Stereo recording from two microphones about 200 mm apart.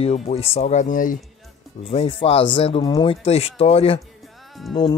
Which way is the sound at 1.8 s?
30° left (ahead or behind).